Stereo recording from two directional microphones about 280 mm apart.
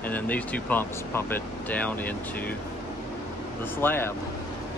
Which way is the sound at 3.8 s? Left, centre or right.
Centre.